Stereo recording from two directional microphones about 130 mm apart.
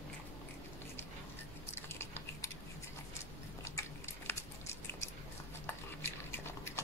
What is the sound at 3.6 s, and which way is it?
Biting, 20° left (ahead or behind).